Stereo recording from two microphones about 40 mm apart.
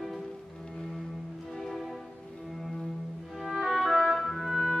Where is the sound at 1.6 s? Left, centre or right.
Centre.